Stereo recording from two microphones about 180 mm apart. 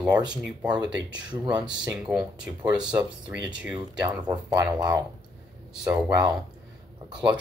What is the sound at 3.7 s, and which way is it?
Speech, 25° right (ahead or behind).